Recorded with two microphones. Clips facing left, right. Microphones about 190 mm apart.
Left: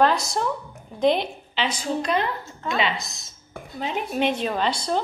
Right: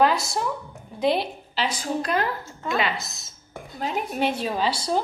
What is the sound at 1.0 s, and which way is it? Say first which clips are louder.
A woman's voice: left 2 dB; 5° right (ahead or behind).